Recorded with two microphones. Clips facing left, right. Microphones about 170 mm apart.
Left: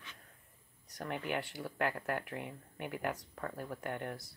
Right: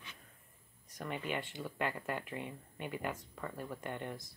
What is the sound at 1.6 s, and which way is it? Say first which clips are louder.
Speech: even; 10° left (ahead or behind).